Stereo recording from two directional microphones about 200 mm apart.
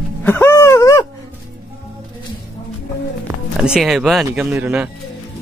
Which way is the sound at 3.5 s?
5° right (ahead or behind).